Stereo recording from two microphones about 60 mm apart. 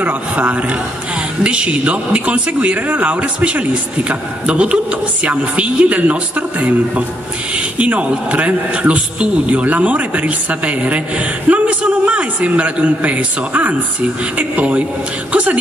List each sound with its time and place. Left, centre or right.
0.0 s a man's voice: right
7.8 s a man's voice: right